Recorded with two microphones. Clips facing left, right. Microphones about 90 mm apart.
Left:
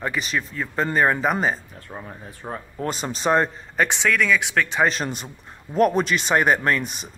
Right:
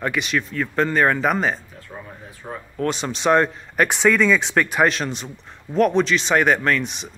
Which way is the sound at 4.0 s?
15° right (ahead or behind).